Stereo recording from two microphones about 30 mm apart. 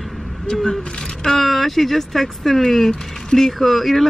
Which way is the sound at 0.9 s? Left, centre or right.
Centre.